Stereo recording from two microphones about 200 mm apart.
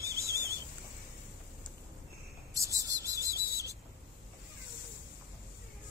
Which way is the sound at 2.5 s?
15° right (ahead or behind).